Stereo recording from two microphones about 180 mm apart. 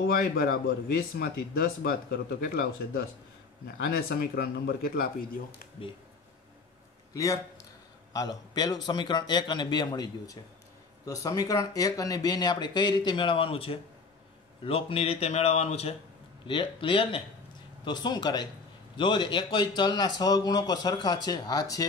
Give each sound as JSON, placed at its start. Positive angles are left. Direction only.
{"t": 0.0, "sound": "speech", "side_deg": 55}
{"t": 8.1, "sound": "speech", "side_deg": 20}